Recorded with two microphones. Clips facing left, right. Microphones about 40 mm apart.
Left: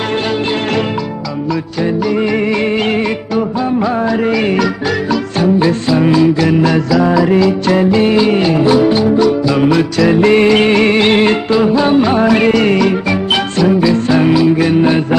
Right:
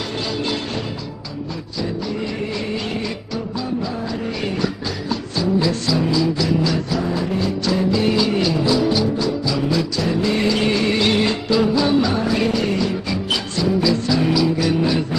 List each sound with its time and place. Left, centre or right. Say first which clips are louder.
4.2 s music: left 11 dB; left
5.4 s music: left 7 dB; left
6.9 s music: left 11 dB; left
7.6 s music: left 8 dB; left